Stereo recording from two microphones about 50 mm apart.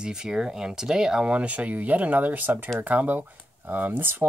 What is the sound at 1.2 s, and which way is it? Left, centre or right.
Speech, right.